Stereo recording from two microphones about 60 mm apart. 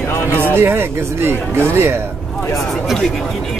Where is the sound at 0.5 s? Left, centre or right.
Right.